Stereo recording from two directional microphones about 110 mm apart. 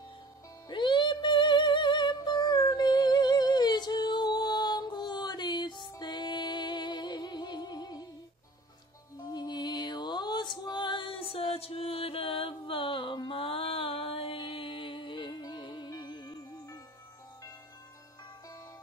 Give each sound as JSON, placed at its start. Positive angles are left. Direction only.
{"t": 0.7, "sound": "music", "side_deg": 45}
{"t": 9.3, "sound": "music", "side_deg": 40}